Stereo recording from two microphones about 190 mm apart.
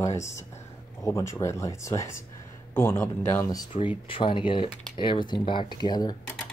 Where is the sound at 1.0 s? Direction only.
15° left (ahead or behind).